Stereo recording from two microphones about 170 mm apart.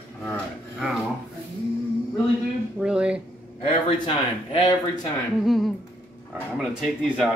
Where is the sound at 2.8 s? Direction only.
5° right (ahead or behind).